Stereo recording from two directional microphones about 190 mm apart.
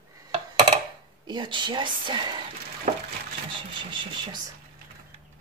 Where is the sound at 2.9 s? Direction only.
40° right (ahead or behind).